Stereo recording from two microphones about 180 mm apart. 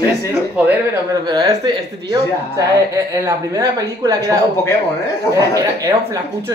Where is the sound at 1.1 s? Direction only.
20° right (ahead or behind).